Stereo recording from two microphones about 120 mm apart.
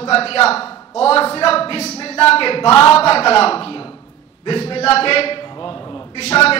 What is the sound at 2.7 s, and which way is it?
Speech, 25° left (ahead or behind).